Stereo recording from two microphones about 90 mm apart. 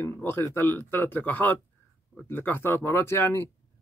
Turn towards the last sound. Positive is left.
turn(degrees=25)  # may be behind; listen again after turning